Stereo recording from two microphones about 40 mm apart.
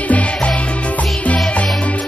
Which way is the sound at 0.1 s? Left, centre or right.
Left.